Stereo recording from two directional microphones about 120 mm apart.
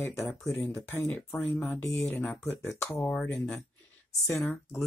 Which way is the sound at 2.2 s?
15° left (ahead or behind).